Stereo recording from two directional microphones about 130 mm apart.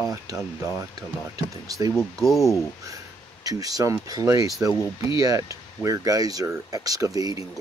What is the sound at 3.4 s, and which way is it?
Speech, 25° right (ahead or behind).